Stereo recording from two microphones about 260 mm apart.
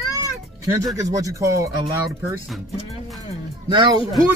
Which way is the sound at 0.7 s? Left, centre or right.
Centre.